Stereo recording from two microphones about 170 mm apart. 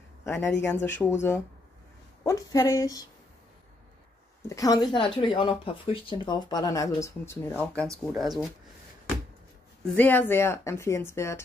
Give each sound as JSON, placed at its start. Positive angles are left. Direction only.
{"t": 0.2, "sound": "speech", "side_deg": 15}
{"t": 2.2, "sound": "speech", "side_deg": 20}
{"t": 4.5, "sound": "speech", "side_deg": 20}
{"t": 7.9, "sound": "speech", "side_deg": 0}
{"t": 9.9, "sound": "speech", "side_deg": 10}